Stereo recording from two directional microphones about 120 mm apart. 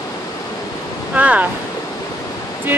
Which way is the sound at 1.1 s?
10° right (ahead or behind).